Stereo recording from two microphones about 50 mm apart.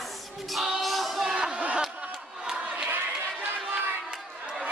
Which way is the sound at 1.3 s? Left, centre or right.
Centre.